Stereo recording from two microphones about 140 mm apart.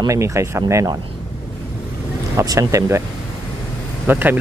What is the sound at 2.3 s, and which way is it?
Speech, 25° right (ahead or behind).